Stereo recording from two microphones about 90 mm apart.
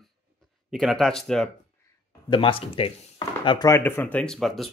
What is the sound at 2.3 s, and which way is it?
Speech, 85° left.